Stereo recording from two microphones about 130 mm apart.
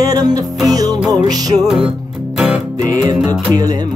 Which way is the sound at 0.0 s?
30° right (ahead or behind).